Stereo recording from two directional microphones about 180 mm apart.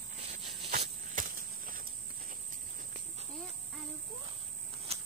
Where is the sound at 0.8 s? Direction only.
45° right (ahead or behind).